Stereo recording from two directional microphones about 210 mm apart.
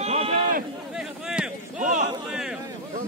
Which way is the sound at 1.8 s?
35° right (ahead or behind).